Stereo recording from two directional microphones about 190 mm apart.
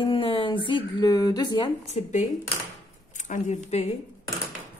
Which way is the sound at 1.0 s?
20° left (ahead or behind).